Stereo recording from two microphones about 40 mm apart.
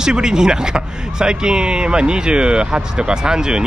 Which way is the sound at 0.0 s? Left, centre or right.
Centre.